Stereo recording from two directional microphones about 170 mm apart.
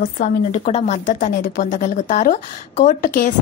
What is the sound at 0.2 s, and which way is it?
A woman's voice, 40° left (ahead or behind).